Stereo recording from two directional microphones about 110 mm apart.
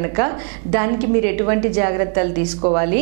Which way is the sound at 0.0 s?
15° right (ahead or behind).